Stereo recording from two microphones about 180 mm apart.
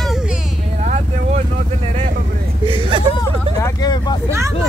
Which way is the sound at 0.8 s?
40° right (ahead or behind).